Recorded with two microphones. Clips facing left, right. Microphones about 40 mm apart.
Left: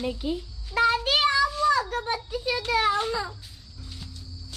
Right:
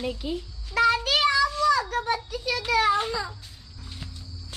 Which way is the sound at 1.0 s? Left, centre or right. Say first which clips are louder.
Even; left.